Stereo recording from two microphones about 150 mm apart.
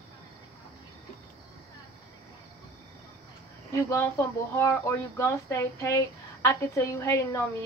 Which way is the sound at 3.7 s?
20° left (ahead or behind).